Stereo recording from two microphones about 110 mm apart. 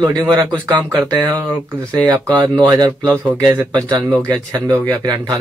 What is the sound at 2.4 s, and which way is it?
Speech, 35° right (ahead or behind).